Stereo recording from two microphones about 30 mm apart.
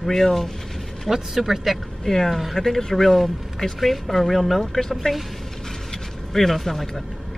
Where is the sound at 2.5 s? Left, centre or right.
Centre.